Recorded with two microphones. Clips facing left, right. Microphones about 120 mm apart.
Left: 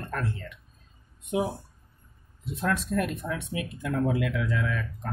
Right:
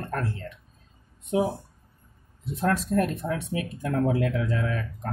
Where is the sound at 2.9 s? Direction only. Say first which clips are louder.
Right 4 dB; 30° right (ahead or behind).